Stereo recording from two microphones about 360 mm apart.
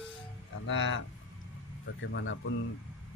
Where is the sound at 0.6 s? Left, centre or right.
Left.